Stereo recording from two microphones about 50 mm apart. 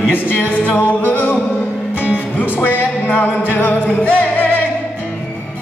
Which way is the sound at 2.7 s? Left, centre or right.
Left.